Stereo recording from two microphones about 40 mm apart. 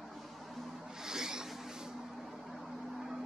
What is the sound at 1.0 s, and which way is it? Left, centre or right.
Zipper, centre.